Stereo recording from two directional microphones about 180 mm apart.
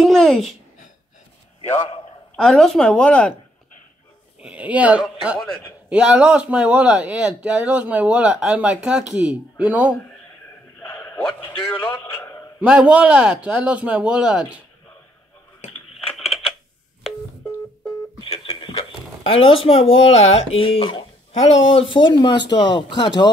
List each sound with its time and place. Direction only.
0.0 s a child's voice: centre (ahead or behind)
1.6 s a man's voice: 40° left (ahead or behind)
2.3 s speech: 5° left (ahead or behind)
4.4 s speech: 5° right (ahead or behind)
10.8 s a man's voice: 5° left (ahead or behind)
12.5 s speech: 5° right (ahead or behind)
18.2 s speech: 30° left (ahead or behind)